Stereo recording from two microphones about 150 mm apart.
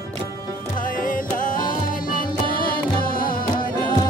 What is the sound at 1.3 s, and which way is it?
Music, 65° left (ahead or behind).